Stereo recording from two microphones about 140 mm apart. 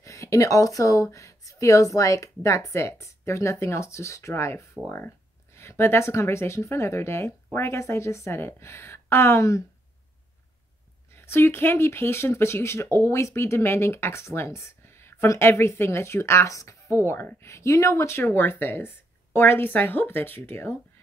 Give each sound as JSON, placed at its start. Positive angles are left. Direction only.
{"t": 0.0, "sound": "a woman's voice", "side_deg": 20}
{"t": 11.1, "sound": "speech", "side_deg": 20}